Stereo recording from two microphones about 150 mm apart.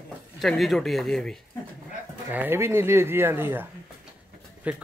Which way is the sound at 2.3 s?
15° right (ahead or behind).